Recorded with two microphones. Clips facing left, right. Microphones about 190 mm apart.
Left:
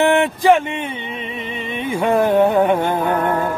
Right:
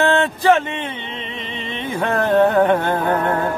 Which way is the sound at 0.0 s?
15° left (ahead or behind).